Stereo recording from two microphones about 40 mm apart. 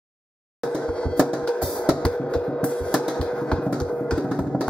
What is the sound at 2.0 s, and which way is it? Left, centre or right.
Music, left.